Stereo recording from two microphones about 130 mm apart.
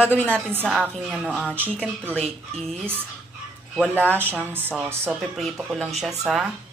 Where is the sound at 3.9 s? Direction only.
15° right (ahead or behind).